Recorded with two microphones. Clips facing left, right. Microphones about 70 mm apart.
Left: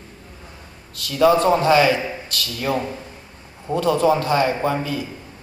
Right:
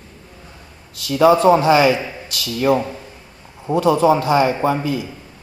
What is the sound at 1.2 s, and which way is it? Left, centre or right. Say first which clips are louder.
A man's voice: right 3 dB; centre.